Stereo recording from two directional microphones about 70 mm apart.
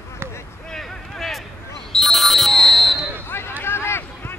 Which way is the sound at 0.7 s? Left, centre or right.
Centre.